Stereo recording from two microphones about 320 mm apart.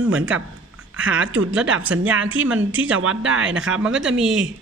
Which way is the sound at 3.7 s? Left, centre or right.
Centre.